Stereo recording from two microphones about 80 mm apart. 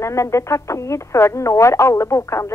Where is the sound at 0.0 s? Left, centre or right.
Left.